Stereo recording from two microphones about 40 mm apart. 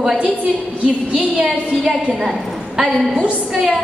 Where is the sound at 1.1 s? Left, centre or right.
Right.